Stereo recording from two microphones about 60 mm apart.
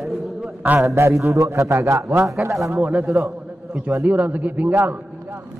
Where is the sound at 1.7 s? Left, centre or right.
Right.